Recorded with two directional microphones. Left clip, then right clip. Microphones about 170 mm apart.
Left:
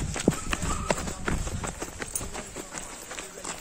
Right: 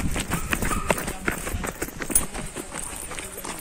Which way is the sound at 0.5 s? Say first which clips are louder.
Right 4 dB; centre (ahead or behind).